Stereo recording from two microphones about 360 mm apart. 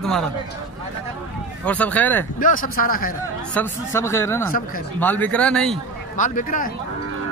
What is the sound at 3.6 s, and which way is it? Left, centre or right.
Speech, centre.